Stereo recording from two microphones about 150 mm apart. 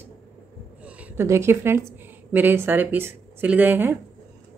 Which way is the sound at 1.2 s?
15° right (ahead or behind).